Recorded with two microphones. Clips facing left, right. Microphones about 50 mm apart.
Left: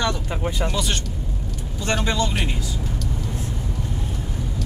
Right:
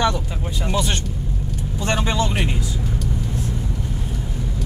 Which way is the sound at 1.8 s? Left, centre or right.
Right.